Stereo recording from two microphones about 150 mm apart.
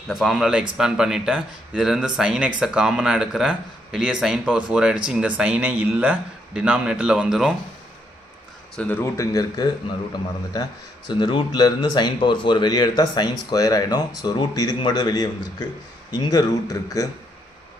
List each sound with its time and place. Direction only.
0.1 s speech: centre (ahead or behind)
8.7 s speech: 10° left (ahead or behind)